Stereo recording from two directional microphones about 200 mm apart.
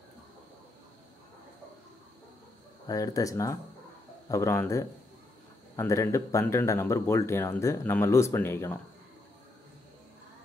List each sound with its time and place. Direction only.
2.9 s speech: 15° left (ahead or behind)